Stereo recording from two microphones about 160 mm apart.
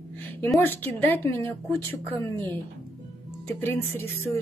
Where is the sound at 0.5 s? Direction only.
15° left (ahead or behind).